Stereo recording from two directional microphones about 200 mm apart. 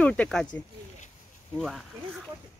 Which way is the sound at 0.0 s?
5° left (ahead or behind).